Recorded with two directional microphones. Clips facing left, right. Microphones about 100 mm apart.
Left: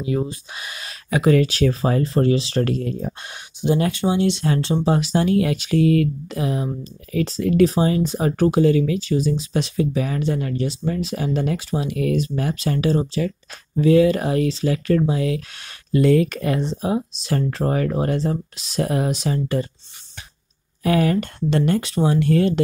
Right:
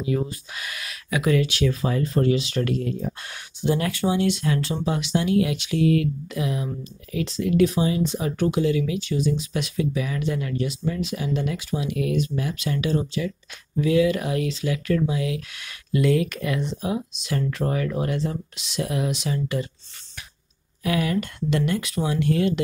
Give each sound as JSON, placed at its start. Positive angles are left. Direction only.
{"t": 0.1, "sound": "speech", "side_deg": 25}
{"t": 3.3, "sound": "speech", "side_deg": 25}
{"t": 4.9, "sound": "speech", "side_deg": 40}
{"t": 20.8, "sound": "speech", "side_deg": 40}